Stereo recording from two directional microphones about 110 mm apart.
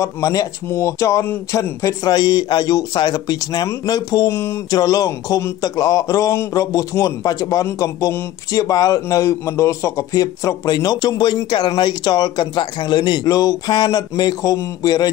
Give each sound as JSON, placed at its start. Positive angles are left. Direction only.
{"t": 0.0, "sound": "speech", "side_deg": 30}